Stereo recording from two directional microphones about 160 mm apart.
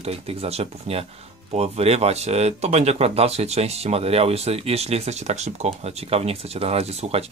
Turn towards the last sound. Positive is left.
turn(degrees=-40)  # may be behind; listen again after turning